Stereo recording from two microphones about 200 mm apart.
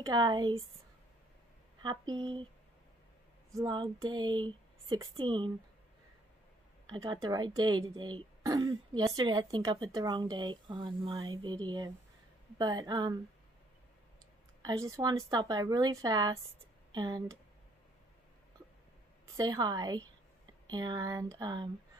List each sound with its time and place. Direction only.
0.0 s speech: 20° right (ahead or behind)
1.8 s speech: 20° right (ahead or behind)
3.5 s speech: 20° right (ahead or behind)
6.9 s speech: 20° right (ahead or behind)
14.6 s speech: 15° right (ahead or behind)
19.3 s speech: 20° right (ahead or behind)